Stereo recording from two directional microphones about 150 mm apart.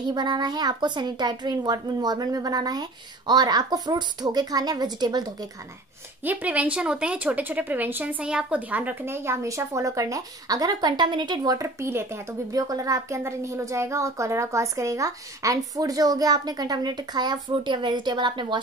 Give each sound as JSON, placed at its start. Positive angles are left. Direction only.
{"t": 0.1, "sound": "speech", "side_deg": -30}
{"t": 6.2, "sound": "speech", "side_deg": -10}